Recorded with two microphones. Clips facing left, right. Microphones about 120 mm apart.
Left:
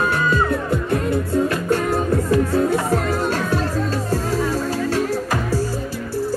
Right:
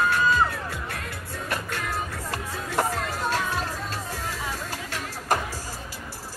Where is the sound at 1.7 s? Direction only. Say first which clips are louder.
Left 12 dB; 45° left (ahead or behind).